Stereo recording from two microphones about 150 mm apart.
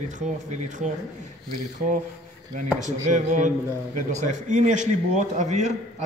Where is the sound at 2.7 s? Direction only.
55° right (ahead or behind).